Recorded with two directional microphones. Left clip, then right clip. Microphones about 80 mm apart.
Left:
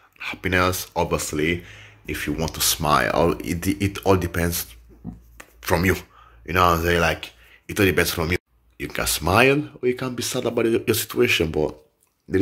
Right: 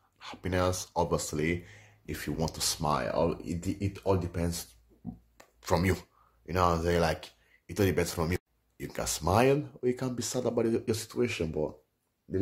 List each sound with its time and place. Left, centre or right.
0.2 s speech: right
1.0 s speech: right
2.0 s speech: right
2.3 s speech: right
3.1 s speech: left
4.4 s speech: centre
5.4 s a sound: right
5.8 s speech: right
7.6 s speech: right
8.3 s speech: right
10.5 s speech: right
10.9 s speech: centre
11.4 s speech: centre